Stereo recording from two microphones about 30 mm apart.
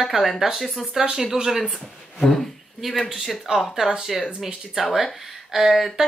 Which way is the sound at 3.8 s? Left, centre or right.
Centre.